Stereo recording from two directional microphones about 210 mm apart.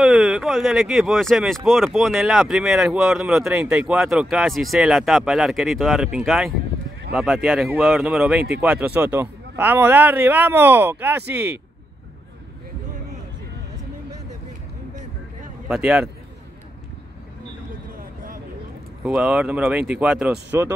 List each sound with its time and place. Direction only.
0.0 s a man's voice: centre (ahead or behind)
15.7 s speech: 5° right (ahead or behind)
17.9 s a sound: 40° right (ahead or behind)
19.0 s speech: 5° right (ahead or behind)